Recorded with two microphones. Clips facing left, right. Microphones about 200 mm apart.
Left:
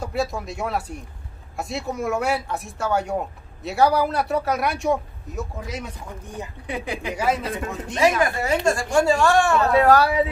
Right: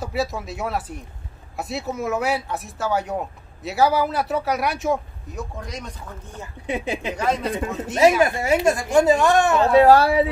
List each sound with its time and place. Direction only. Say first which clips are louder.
0.0 s speech: even; centre (ahead or behind); by 6.5 s 15° left (ahead or behind)
6.6 s a man's voice: right 4 dB; 25° right (ahead or behind)
7.2 s speech: left 1 dB; 5° left (ahead or behind)
7.5 s a man's voice: right 3 dB; 15° right (ahead or behind)